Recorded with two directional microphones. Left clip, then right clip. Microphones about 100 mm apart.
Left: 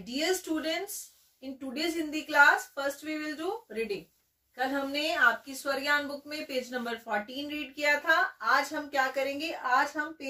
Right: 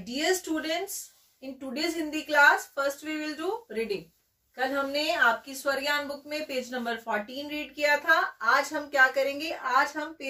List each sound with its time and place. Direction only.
0.0 s a woman's voice: 25° left (ahead or behind)
4.6 s a woman's voice: 20° left (ahead or behind)